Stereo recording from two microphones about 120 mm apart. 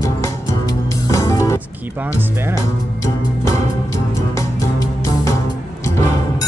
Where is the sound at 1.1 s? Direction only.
25° left (ahead or behind).